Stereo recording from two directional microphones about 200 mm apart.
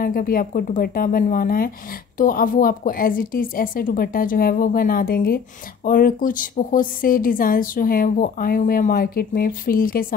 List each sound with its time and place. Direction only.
0.0 s a woman's voice: 45° left (ahead or behind)